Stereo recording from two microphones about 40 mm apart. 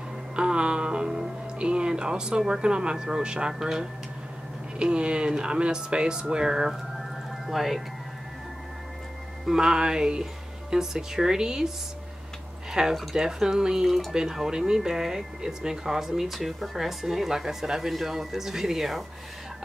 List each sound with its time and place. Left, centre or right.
0.4 s speech: right
1.6 s speech: right
3.5 s speech: centre
4.7 s speech: right
7.4 s speech: centre
9.5 s speech: centre
12.8 s speech: centre
13.8 s speech: centre